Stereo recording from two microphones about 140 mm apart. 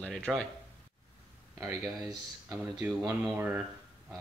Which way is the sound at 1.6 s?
20° right (ahead or behind).